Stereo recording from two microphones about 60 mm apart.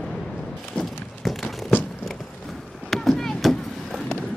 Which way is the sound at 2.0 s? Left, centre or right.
Centre.